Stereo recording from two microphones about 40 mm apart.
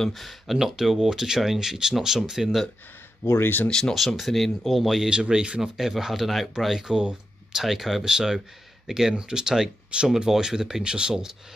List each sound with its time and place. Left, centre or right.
0.1 s speech: centre
3.3 s speech: left
3.9 s speech: centre
5.1 s speech: right
5.6 s speech: centre
6.9 s speech: right
7.6 s speech: centre